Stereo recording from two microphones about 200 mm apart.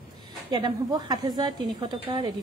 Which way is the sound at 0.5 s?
20° right (ahead or behind).